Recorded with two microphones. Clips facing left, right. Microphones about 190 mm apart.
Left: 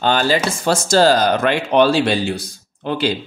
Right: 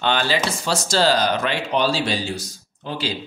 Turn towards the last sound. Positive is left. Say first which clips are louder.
# left 7 dB
turn(degrees=60)  # may be behind; listen again after turning